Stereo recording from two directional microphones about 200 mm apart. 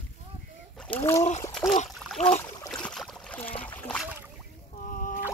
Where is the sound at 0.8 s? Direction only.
10° left (ahead or behind).